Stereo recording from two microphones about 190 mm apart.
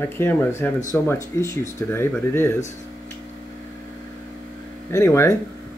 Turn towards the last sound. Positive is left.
turn(degrees=15)  # may be behind; listen again after turning